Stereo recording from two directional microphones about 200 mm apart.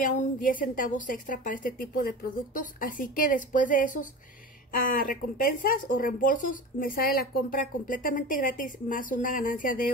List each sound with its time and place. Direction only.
0.0 s speech: 40° left (ahead or behind)